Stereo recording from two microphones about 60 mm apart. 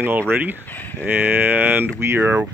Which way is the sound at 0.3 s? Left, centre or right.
Right.